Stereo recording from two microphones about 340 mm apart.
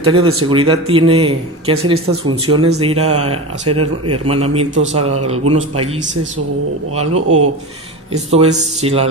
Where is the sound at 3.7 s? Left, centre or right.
Right.